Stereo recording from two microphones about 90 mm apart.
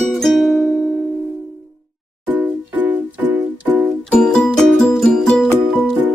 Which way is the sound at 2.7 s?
15° right (ahead or behind).